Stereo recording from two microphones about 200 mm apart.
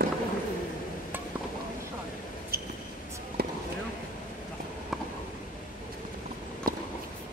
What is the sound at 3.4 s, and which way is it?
Basketball bounce, 50° right (ahead or behind).